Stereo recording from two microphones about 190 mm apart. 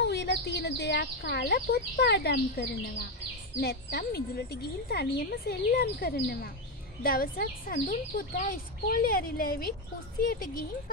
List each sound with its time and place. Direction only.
0.0 s speech: 65° left (ahead or behind); by 10.6 s 50° left (ahead or behind)